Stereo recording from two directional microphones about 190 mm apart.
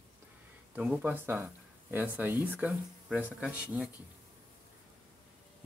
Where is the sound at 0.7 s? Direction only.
5° right (ahead or behind).